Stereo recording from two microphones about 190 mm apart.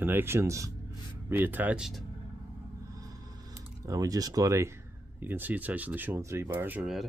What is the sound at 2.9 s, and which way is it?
Speech, 20° right (ahead or behind).